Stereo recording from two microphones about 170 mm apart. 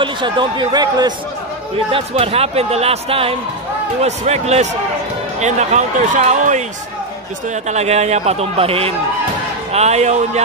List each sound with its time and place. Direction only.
0.0 s speech: 25° right (ahead or behind)
1.9 s speech: 35° right (ahead or behind)